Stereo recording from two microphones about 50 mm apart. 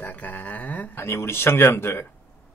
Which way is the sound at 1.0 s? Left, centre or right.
Left.